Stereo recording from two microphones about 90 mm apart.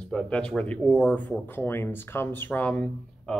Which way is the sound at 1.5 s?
25° left (ahead or behind).